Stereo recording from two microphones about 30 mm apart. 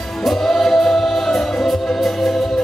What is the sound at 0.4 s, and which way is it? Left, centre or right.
Music, centre.